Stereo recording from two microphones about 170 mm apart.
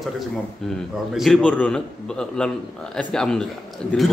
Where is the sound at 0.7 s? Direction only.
Centre (ahead or behind).